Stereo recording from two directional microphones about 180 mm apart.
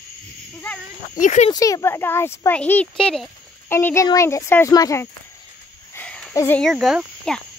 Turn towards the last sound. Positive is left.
turn(degrees=0)  # may be behind; listen again after turning